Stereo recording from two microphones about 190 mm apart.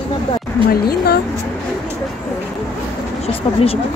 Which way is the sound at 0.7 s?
55° left (ahead or behind).